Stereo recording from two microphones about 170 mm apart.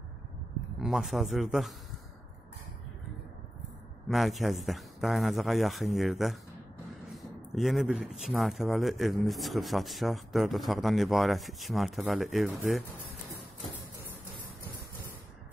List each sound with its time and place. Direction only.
0.7 s a man's voice: centre (ahead or behind)
4.1 s speech: centre (ahead or behind)